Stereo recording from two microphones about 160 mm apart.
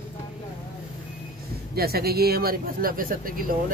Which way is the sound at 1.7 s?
75° right (ahead or behind).